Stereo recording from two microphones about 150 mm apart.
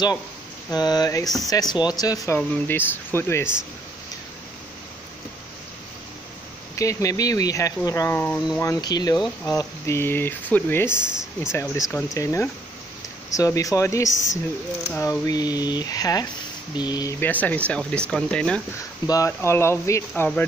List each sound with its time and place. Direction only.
0.7 s speech: 25° left (ahead or behind)
6.7 s speech: 20° left (ahead or behind)
11.0 s speech: 5° right (ahead or behind)
11.9 s speech: 20° left (ahead or behind)
17.2 s speech: 10° left (ahead or behind)
18.8 s speech: 20° left (ahead or behind)